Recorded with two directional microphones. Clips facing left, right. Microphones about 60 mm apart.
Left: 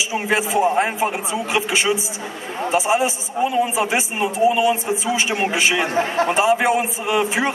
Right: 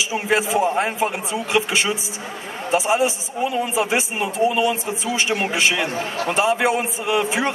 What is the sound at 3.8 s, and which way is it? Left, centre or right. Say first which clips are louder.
A man's voice: left 1 dB; centre.